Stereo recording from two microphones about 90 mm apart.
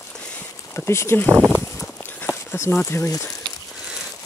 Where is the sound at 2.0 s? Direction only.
20° left (ahead or behind).